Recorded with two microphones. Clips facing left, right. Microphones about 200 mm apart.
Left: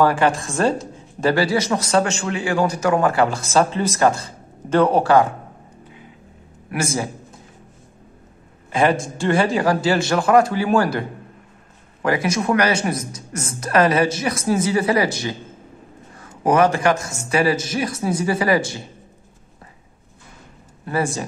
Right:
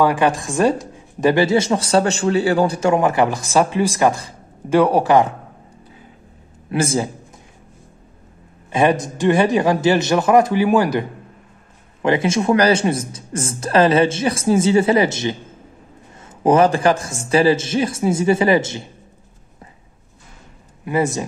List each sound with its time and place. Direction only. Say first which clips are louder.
0.0 s speech: right 1 dB; 15° right (ahead or behind)
6.7 s a man's voice: right 4 dB; 30° right (ahead or behind)
8.7 s a man's voice: right 2 dB; 20° right (ahead or behind)
20.8 s a man's voice: right 3 dB; 20° right (ahead or behind)